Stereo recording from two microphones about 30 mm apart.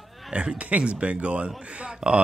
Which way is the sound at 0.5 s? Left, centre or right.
Right.